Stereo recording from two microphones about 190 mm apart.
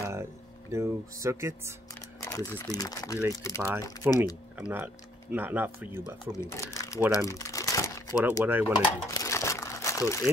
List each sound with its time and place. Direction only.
0.0 s speech: 15° right (ahead or behind)
2.2 s speech: 20° left (ahead or behind)
4.1 s speech: 10° right (ahead or behind)
6.3 s speech: 15° left (ahead or behind)
6.7 s crumpling: 15° left (ahead or behind)
8.3 s speech: 10° right (ahead or behind)
8.7 s crumpling: 15° left (ahead or behind)